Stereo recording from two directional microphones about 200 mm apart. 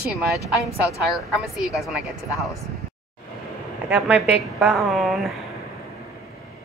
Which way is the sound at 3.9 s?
5° right (ahead or behind).